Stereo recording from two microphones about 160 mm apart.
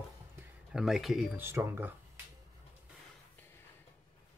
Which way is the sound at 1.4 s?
15° right (ahead or behind).